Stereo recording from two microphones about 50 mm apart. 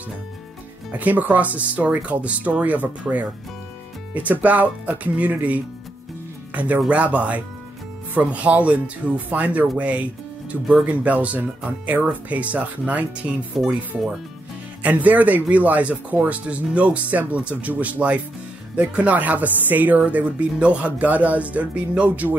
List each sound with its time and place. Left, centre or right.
0.9 s speech: right
13.5 s speech: centre
14.8 s speech: right